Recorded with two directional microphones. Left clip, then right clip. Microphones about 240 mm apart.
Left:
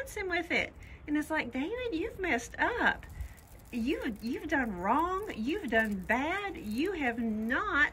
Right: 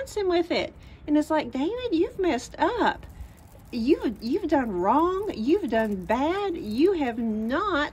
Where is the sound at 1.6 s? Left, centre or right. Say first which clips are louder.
Right 9 dB; centre.